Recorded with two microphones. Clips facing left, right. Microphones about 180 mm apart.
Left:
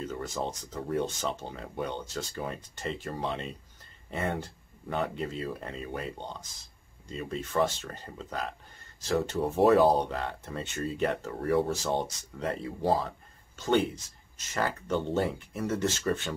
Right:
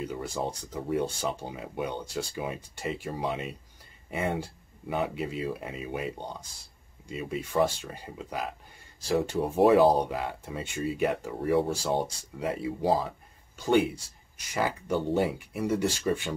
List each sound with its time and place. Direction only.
0.0 s speech: 10° right (ahead or behind)